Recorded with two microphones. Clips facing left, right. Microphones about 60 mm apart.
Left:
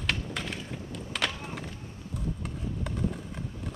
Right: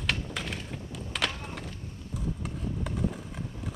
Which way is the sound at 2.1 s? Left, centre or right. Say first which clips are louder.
Even; centre.